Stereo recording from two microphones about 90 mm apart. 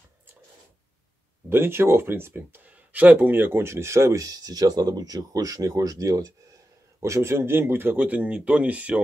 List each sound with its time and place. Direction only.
1.5 s speech: 25° right (ahead or behind)